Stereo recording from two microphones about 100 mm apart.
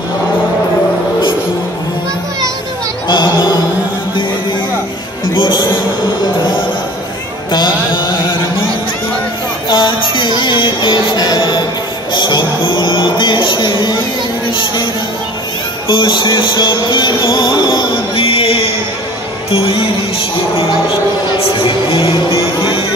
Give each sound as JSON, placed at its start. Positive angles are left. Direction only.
{"t": 3.1, "sound": "music", "side_deg": 50}
{"t": 5.3, "sound": "music", "side_deg": 50}
{"t": 7.5, "sound": "mantra", "side_deg": 50}
{"t": 9.7, "sound": "music", "side_deg": 55}
{"t": 15.9, "sound": "music", "side_deg": 55}
{"t": 21.4, "sound": "speech", "side_deg": 65}